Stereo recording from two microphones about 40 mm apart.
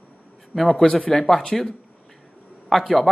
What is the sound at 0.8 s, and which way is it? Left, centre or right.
Speech, left.